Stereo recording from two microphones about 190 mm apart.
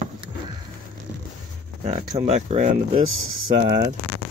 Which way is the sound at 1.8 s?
35° right (ahead or behind).